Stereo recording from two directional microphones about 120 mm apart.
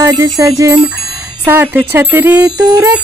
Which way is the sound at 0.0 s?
30° right (ahead or behind).